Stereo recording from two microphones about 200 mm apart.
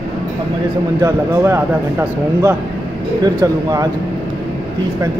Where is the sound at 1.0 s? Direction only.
15° right (ahead or behind).